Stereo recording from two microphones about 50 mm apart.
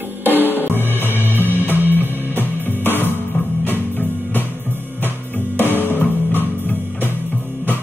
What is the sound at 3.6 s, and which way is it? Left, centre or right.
Music, left.